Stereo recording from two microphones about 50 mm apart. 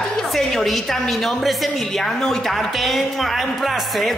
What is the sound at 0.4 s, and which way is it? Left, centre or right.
A woman's voice, centre.